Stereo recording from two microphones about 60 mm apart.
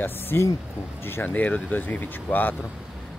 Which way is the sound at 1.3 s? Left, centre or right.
Left.